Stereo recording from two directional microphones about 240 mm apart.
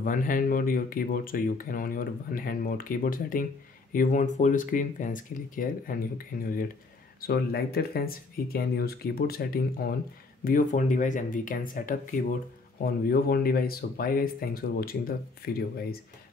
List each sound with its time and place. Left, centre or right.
0.0 s speech: left